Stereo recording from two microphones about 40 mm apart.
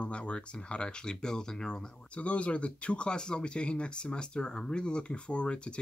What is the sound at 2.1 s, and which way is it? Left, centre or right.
Speech, left.